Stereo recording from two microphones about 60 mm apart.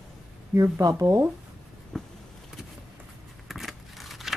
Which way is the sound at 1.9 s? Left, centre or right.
Centre.